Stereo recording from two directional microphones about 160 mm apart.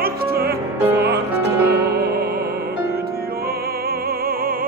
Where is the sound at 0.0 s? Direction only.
70° right (ahead or behind).